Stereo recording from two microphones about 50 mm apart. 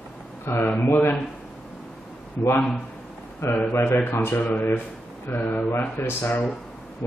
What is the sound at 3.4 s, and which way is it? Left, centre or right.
Speech, left.